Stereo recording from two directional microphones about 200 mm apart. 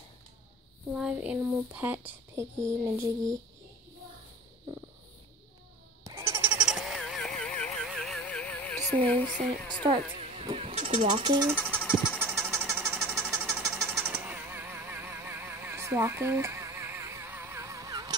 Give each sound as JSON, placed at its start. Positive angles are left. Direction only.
{"t": 0.9, "sound": "speech", "side_deg": -5}
{"t": 6.0, "sound": "goat", "side_deg": -15}
{"t": 9.8, "sound": "speech", "side_deg": -25}
{"t": 11.6, "sound": "vehicle", "side_deg": -10}
{"t": 13.5, "sound": "a sound", "side_deg": -15}